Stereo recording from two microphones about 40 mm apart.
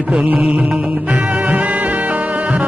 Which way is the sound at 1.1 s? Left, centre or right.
Right.